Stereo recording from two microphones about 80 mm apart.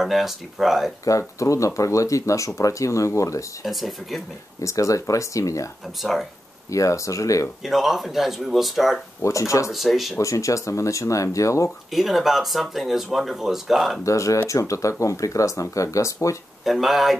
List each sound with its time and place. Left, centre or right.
0.0 s speech: centre
1.0 s speech: left
3.6 s speech: centre
4.6 s speech: left
5.9 s speech: centre
6.7 s speech: left
7.6 s speech: centre
9.2 s speech: left
9.7 s speech: centre
10.1 s speech: left
11.9 s speech: centre
14.0 s speech: left
16.6 s speech: centre